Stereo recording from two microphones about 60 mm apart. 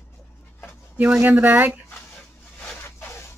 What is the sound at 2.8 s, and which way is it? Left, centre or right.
Zipper, left.